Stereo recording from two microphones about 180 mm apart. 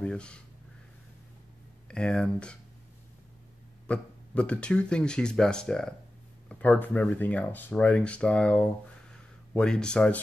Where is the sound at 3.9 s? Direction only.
5° left (ahead or behind).